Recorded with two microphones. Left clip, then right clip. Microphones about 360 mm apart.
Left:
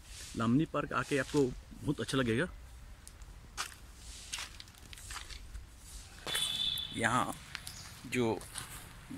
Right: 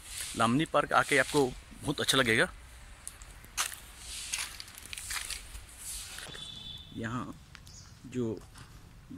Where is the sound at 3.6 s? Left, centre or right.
Centre.